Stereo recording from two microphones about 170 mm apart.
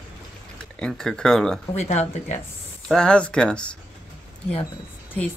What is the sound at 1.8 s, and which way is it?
Speech, 40° left (ahead or behind).